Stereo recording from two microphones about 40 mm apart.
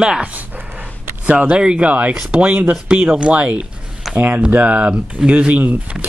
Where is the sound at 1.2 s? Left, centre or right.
Right.